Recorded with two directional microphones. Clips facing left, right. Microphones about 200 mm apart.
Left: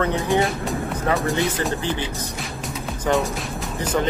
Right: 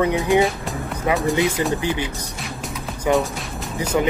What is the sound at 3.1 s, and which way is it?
Music, centre (ahead or behind).